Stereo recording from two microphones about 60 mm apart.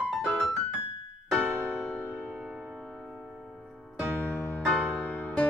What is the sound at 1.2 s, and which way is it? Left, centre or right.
Music, centre.